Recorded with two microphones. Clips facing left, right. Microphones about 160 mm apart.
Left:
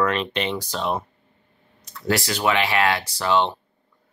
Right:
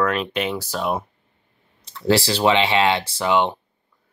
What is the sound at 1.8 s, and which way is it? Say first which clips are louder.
Speech: right 5 dB; 30° right (ahead or behind).